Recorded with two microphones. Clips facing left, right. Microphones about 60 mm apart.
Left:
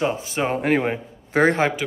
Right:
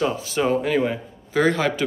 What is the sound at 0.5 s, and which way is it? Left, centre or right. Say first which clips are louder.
Speech: even; left.